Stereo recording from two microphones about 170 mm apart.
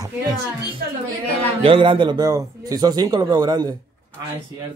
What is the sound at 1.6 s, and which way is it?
A man's voice, 30° right (ahead or behind).